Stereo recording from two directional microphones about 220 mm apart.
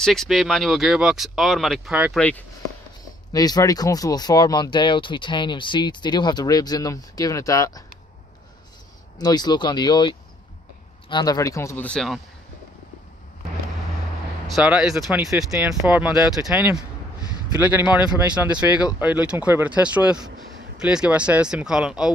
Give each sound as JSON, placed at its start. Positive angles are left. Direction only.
{"t": 0.0, "sound": "speech", "side_deg": 0}
{"t": 2.1, "sound": "speech", "side_deg": 5}
{"t": 3.3, "sound": "speech", "side_deg": 15}
{"t": 9.2, "sound": "speech", "side_deg": 20}
{"t": 14.5, "sound": "speech", "side_deg": -5}